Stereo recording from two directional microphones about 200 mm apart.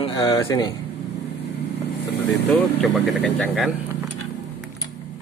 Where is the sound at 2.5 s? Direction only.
Centre (ahead or behind).